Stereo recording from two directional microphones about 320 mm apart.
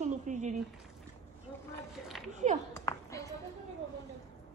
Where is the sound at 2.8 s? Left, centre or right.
Centre.